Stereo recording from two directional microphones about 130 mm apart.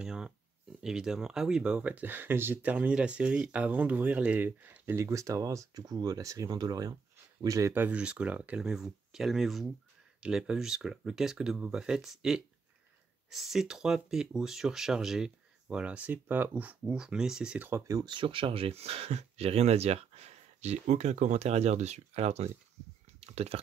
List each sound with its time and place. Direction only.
0.0 s speech: 5° right (ahead or behind)
17.6 s speech: 25° right (ahead or behind); by 23.6 s 50° right (ahead or behind)